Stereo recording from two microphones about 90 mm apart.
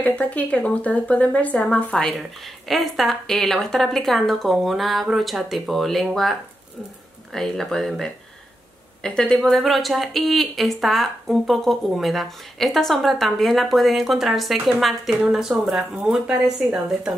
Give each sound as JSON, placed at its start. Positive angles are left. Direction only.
{"t": 0.0, "sound": "speech", "side_deg": 15}
{"t": 7.3, "sound": "speech", "side_deg": 0}